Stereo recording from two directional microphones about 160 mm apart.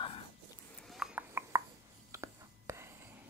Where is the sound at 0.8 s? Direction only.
Centre (ahead or behind).